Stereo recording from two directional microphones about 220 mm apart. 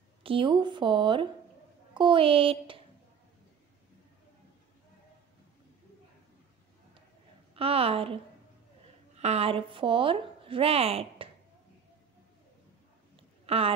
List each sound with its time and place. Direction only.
0.2 s a woman's voice: 25° right (ahead or behind)
7.5 s a woman's voice: 25° right (ahead or behind)
13.1 s a sound: 25° right (ahead or behind)